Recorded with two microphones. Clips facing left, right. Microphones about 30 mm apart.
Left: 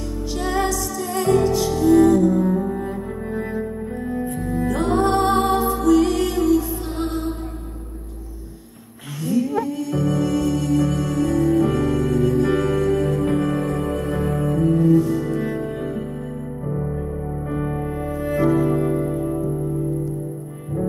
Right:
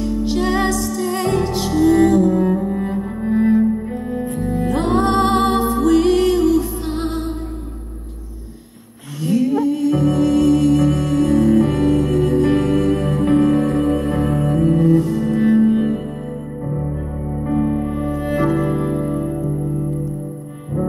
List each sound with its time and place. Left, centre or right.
0.0 s music: right
9.2 s music: right
15.0 s music: centre
15.3 s music: right
16.9 s music: centre
18.1 s music: right